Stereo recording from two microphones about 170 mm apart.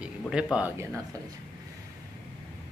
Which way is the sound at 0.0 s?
5° right (ahead or behind).